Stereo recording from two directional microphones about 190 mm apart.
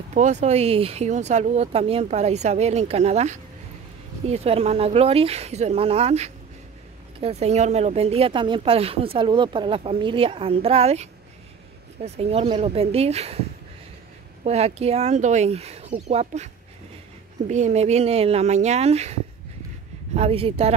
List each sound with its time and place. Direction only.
0.1 s speech: 40° right (ahead or behind)
14.4 s speech: 35° right (ahead or behind)
17.5 s speech: 40° right (ahead or behind)
20.2 s speech: 30° right (ahead or behind)